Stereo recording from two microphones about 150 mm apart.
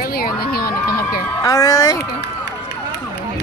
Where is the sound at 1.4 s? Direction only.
25° left (ahead or behind).